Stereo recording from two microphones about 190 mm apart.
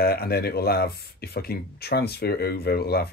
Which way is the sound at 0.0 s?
55° left (ahead or behind).